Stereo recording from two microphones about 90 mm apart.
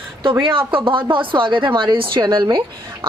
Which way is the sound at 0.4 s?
75° right (ahead or behind).